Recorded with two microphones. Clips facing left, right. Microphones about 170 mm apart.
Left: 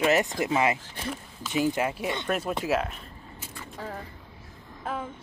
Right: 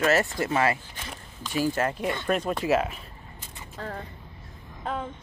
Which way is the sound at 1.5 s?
20° left (ahead or behind).